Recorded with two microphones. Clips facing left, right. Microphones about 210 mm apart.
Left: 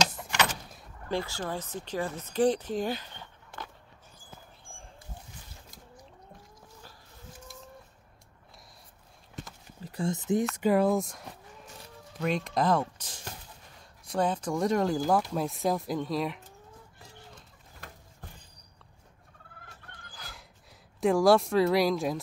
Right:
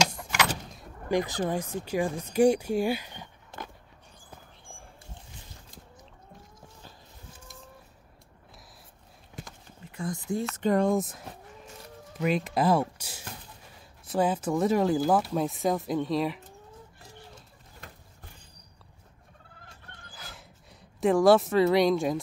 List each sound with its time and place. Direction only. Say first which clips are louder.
1.0 s speech: right 5 dB; 15° right (ahead or behind)
9.8 s a sound: left 3 dB; 35° left (ahead or behind)
10.1 s speech: left 4 dB; 20° left (ahead or behind)
10.5 s speech: right 3 dB; 5° left (ahead or behind)
12.9 s a sound: right 2 dB; 10° right (ahead or behind)
14.0 s speech: right 2 dB; 5° right (ahead or behind)
20.2 s horse: right 1 dB; centre (ahead or behind)
21.0 s speech: right 2 dB; centre (ahead or behind)